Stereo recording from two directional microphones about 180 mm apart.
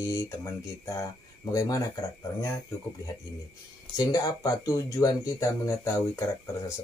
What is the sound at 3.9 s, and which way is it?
Speech, 20° left (ahead or behind).